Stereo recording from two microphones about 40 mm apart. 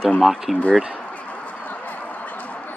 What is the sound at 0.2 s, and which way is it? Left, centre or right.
Speech, centre.